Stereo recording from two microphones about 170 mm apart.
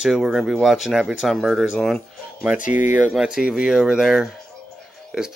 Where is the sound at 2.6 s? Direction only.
50° left (ahead or behind).